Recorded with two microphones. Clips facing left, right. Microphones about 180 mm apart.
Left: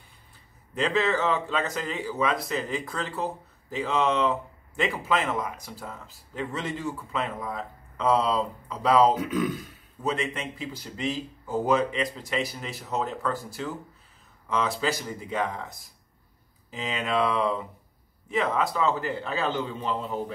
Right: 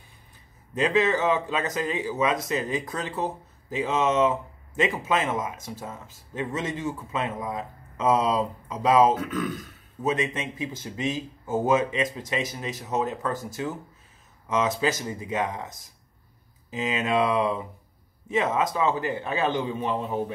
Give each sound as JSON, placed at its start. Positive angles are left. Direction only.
{"t": 0.7, "sound": "speech", "side_deg": -20}
{"t": 9.1, "sound": "speech", "side_deg": 10}
{"t": 10.0, "sound": "speech", "side_deg": -20}
{"t": 16.7, "sound": "a man's voice", "side_deg": -20}